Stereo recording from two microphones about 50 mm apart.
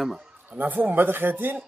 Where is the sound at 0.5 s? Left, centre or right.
Right.